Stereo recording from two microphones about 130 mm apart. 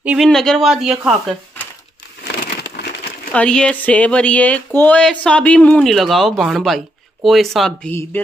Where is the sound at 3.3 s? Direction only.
10° left (ahead or behind).